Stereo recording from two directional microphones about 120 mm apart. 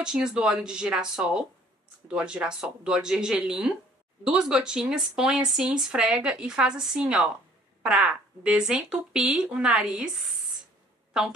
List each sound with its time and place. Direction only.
0.0 s speech: 5° right (ahead or behind)